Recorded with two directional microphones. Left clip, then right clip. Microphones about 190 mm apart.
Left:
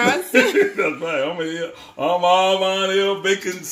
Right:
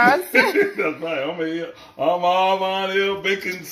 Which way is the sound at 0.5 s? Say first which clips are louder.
Left 2 dB; 40° left (ahead or behind).